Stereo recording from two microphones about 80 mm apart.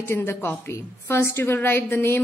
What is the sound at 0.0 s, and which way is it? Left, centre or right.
A woman's voice, left.